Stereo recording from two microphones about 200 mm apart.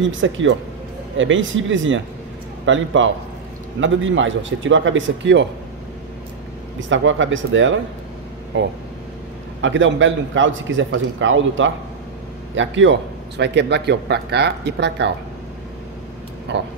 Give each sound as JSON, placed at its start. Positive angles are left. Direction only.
{"t": 0.0, "sound": "a man's voice", "side_deg": -70}
{"t": 6.8, "sound": "a man's voice", "side_deg": -70}
{"t": 16.5, "sound": "a man's voice", "side_deg": -60}